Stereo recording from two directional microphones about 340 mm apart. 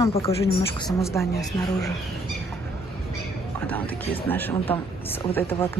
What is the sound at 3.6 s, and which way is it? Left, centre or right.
Speech, centre.